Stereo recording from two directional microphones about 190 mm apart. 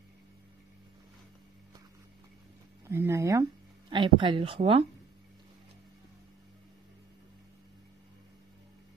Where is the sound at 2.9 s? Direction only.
15° right (ahead or behind).